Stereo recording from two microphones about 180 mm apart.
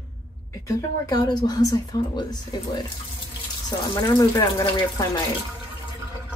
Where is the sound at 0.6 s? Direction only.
20° left (ahead or behind).